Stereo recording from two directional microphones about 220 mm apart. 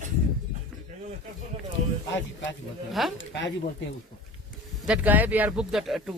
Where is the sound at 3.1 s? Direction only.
55° left (ahead or behind).